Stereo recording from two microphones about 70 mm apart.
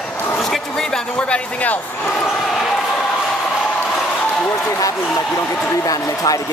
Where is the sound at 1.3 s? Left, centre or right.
Left.